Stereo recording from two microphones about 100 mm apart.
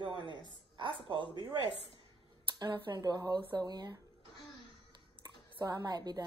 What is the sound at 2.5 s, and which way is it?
Speech, 50° right (ahead or behind).